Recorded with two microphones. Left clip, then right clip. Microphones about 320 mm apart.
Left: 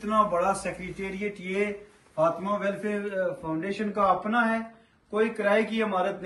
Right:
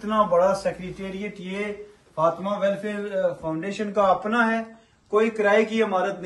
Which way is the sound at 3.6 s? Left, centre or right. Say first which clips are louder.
Right 3 dB; right.